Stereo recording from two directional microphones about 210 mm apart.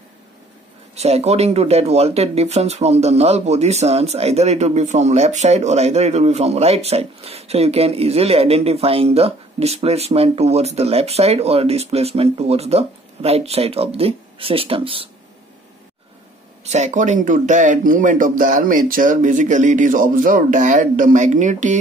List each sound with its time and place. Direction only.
0.9 s speech: 30° right (ahead or behind)
16.6 s speech: 35° right (ahead or behind)